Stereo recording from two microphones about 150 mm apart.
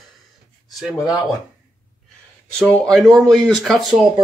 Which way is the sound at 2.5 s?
5° left (ahead or behind).